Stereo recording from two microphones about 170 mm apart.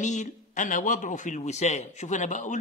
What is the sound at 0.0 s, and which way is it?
A man's voice, 45° left (ahead or behind).